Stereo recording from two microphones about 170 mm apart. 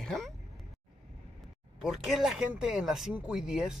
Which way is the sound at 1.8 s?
Centre (ahead or behind).